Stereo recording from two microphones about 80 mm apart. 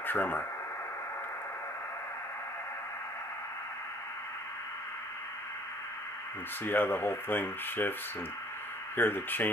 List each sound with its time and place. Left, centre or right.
0.0 s speech: left
6.6 s speech: left
8.9 s speech: left